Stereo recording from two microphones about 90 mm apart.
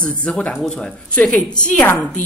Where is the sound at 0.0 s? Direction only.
10° left (ahead or behind).